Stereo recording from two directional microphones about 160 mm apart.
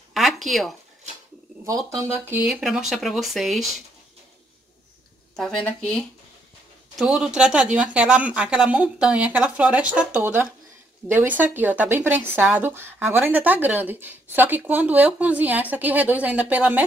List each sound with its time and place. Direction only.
0.1 s a sound: centre (ahead or behind)
1.9 s speech: 15° right (ahead or behind)
2.4 s speech: 5° right (ahead or behind)
5.3 s speech: 5° left (ahead or behind); by 16.8 s 10° right (ahead or behind)